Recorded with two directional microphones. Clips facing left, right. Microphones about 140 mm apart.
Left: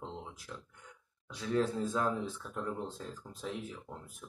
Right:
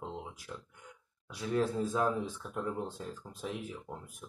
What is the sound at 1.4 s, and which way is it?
Speech, 15° right (ahead or behind).